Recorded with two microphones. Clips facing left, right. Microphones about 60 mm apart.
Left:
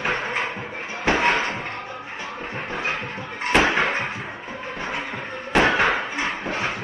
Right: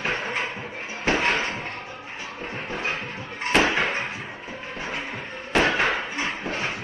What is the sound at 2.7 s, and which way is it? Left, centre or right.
Music, left.